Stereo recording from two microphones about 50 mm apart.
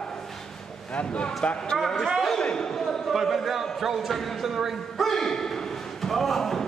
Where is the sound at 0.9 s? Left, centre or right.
Left.